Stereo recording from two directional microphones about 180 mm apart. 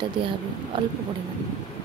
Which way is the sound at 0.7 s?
25° right (ahead or behind).